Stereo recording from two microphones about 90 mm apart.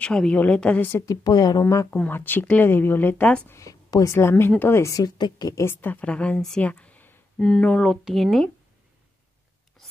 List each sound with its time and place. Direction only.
0.0 s speech: 10° left (ahead or behind)
1.1 s a woman's voice: 45° left (ahead or behind)
1.6 s speech: 35° left (ahead or behind)
3.5 s a woman's voice: 35° left (ahead or behind)
5.1 s a woman's voice: 50° left (ahead or behind)
5.6 s speech: 25° left (ahead or behind); by 8.5 s centre (ahead or behind)